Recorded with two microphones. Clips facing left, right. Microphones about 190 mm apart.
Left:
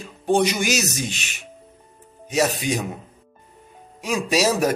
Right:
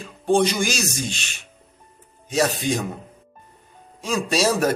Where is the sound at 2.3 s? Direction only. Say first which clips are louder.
Even; 10° left (ahead or behind).